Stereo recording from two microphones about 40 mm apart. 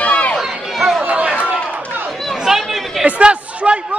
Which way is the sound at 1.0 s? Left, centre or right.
Right.